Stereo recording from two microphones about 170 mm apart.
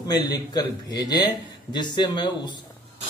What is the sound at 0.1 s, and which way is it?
Speech, 25° left (ahead or behind).